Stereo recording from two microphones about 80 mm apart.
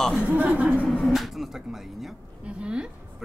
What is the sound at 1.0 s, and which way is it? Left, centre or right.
A woman's voice, centre.